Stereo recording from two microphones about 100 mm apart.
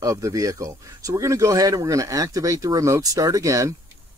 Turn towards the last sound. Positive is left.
turn(degrees=-30)  # may be behind; listen again after turning